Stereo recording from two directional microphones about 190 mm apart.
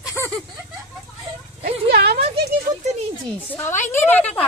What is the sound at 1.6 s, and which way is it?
Speech, 55° right (ahead or behind).